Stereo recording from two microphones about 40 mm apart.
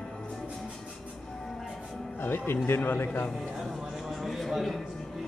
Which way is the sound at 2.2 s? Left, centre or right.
Left.